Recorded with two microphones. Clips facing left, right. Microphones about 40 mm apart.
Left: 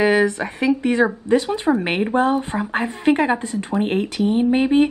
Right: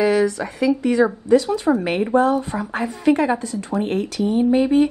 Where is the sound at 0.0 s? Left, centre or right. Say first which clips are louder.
Left 1 dB; left.